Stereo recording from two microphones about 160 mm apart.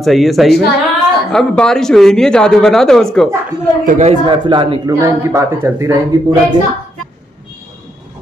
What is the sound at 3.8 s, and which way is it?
Speech, 50° right (ahead or behind).